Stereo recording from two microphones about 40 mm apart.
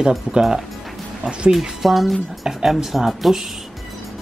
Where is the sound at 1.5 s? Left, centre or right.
Centre.